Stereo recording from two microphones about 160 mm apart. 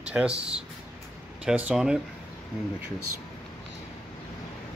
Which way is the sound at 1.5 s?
5° right (ahead or behind).